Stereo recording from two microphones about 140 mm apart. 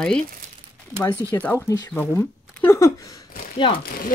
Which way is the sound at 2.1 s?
15° left (ahead or behind).